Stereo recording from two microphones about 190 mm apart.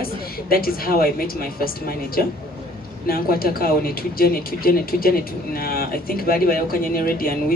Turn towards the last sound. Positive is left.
turn(degrees=50)  # may be behind; listen again after turning